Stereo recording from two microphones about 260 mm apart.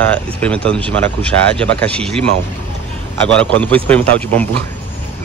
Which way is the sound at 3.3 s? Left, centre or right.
Centre.